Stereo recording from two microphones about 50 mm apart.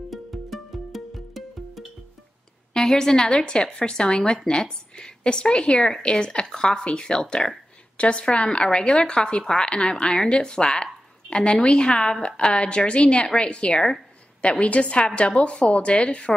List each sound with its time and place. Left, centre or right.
0.1 s music: centre
2.7 s a woman's voice: centre